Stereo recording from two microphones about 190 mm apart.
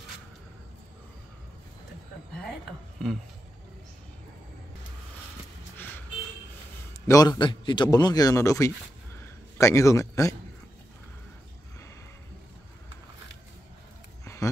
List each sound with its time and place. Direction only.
3.0 s speech: 5° left (ahead or behind)
7.1 s a man's voice: 20° left (ahead or behind)
14.2 s a sound: 15° left (ahead or behind)